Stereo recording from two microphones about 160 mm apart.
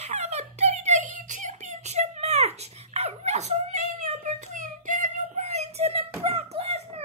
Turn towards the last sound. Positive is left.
turn(degrees=-40)  # may be behind; listen again after turning